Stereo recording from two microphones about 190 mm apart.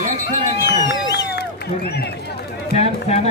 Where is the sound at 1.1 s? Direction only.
60° left (ahead or behind).